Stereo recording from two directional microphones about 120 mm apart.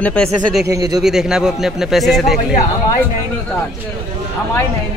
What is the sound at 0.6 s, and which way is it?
Speech, 30° right (ahead or behind).